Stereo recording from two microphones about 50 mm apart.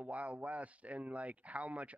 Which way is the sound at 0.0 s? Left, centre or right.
Right.